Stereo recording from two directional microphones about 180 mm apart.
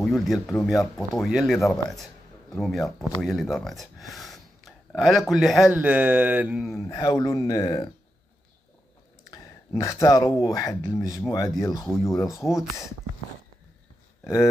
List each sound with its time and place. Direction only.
0.0 s speech: centre (ahead or behind)
6.7 s speech: 15° left (ahead or behind)
9.3 s speech: 20° left (ahead or behind)